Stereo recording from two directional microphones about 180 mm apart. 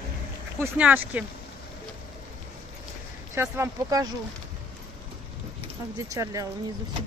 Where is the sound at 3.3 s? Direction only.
15° right (ahead or behind).